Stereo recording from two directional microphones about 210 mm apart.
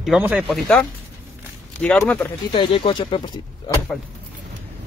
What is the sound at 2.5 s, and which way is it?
Speech, 25° left (ahead or behind).